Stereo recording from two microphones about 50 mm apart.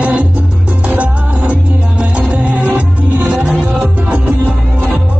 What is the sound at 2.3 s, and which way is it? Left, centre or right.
Music, right.